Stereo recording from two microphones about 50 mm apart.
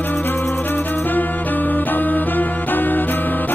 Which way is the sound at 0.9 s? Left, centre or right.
Left.